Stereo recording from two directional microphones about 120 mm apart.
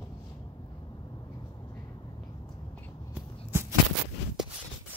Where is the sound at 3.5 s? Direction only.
20° right (ahead or behind).